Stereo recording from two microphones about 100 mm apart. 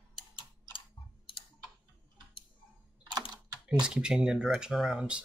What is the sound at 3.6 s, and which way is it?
Speech, 10° right (ahead or behind).